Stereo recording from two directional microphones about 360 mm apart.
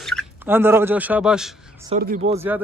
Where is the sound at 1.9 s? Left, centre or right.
Right.